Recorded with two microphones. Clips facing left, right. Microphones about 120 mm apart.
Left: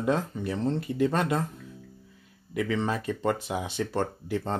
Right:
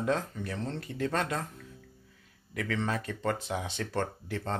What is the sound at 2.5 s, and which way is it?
Speech, 15° left (ahead or behind).